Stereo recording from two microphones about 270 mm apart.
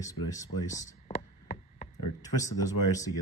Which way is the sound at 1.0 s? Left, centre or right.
Left.